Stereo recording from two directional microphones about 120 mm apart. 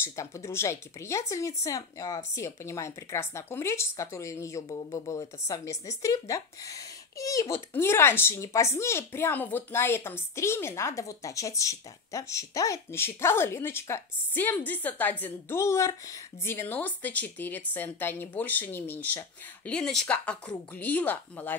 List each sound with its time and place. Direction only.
0.0 s speech: 25° left (ahead or behind)